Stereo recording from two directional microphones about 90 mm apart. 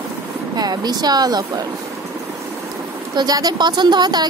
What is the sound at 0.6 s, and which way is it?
Speech, 50° right (ahead or behind).